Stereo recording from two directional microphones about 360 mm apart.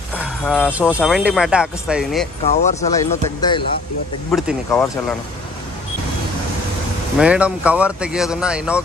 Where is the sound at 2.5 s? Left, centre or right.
Centre.